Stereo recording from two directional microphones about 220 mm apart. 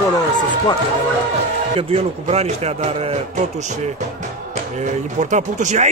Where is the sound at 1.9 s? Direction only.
30° right (ahead or behind).